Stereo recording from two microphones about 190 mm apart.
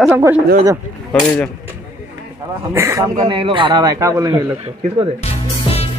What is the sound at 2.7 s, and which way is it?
Speech, 15° right (ahead or behind).